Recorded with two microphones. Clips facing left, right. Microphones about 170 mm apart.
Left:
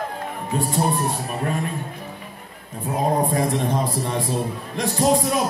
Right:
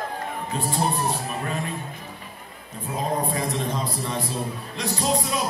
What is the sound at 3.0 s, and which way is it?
A man's voice, 55° left (ahead or behind).